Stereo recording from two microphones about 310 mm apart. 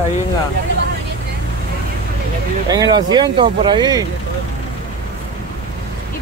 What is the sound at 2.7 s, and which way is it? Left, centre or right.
Speech, centre.